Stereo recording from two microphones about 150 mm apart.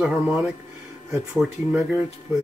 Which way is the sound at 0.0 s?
Centre (ahead or behind).